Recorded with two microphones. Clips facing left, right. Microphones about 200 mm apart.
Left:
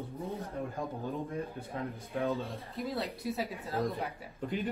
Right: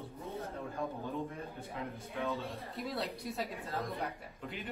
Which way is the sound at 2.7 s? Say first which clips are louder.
Left 3 dB; centre (ahead or behind).